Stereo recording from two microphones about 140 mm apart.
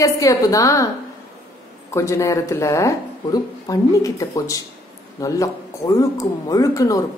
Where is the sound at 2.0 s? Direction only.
20° left (ahead or behind).